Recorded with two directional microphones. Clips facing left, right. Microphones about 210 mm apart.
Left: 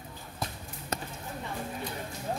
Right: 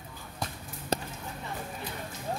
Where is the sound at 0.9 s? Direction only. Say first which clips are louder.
Right 5 dB; 30° right (ahead or behind).